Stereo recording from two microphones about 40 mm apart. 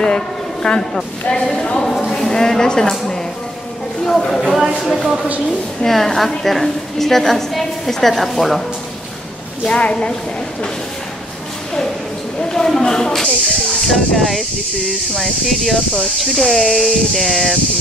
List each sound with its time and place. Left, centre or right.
0.7 s speech: left
4.3 s speech: centre
9.7 s speech: left
12.4 s a woman's voice: centre
13.5 s speech: centre